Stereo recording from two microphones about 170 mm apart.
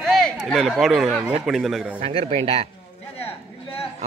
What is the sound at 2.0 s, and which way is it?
Speech, 35° right (ahead or behind).